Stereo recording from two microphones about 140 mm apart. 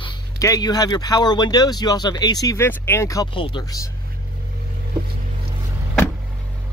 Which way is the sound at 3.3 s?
35° left (ahead or behind).